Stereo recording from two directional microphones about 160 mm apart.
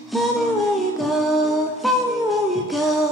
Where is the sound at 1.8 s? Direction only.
Centre (ahead or behind).